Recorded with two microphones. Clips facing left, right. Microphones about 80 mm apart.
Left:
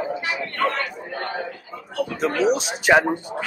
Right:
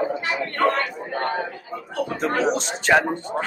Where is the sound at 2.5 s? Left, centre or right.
Centre.